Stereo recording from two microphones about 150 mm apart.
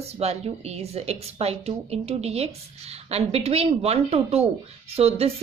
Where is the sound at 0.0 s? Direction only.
45° right (ahead or behind).